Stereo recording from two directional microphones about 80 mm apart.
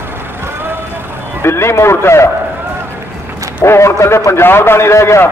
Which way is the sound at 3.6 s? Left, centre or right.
Left.